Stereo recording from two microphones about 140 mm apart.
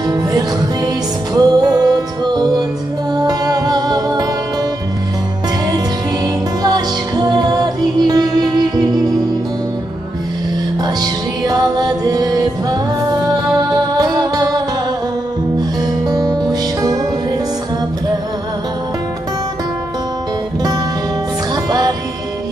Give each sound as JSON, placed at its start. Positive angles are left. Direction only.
{"t": 0.1, "sound": "music", "side_deg": -30}
{"t": 6.6, "sound": "music", "side_deg": -30}
{"t": 10.8, "sound": "music", "side_deg": -30}
{"t": 16.1, "sound": "music", "side_deg": -25}
{"t": 21.6, "sound": "music", "side_deg": -30}